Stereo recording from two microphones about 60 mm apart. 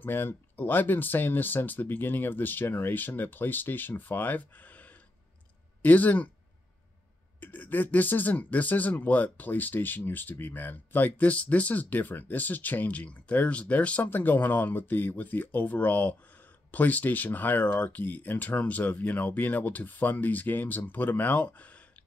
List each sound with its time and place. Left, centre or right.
0.0 s speech: left
7.3 s speech: left